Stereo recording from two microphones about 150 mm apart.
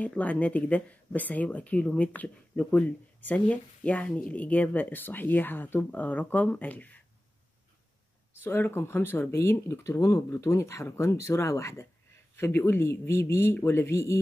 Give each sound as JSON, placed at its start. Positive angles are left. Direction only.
{"t": 0.0, "sound": "speech", "side_deg": 10}
{"t": 8.5, "sound": "speech", "side_deg": 15}